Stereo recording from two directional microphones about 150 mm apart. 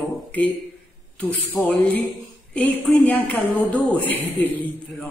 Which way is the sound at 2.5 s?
5° left (ahead or behind).